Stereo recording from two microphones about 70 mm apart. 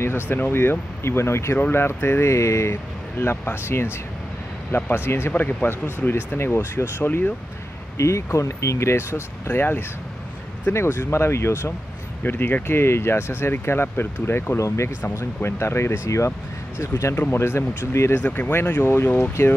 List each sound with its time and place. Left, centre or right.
0.0 s speech: left
5.3 s speech: left
8.0 s speech: left
17.1 s speech: left
18.2 s speech: left
19.0 s speech: left